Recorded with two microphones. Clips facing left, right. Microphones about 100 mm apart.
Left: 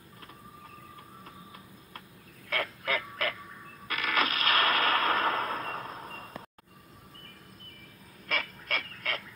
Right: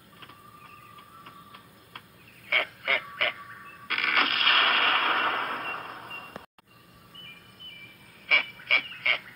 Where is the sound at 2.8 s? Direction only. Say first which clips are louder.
Right 1 dB; 60° right (ahead or behind).